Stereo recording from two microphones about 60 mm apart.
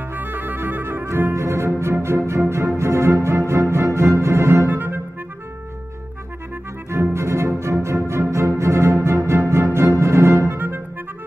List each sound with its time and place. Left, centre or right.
0.1 s music: right
1.3 s music: right
4.6 s music: right
6.9 s music: right
10.5 s music: right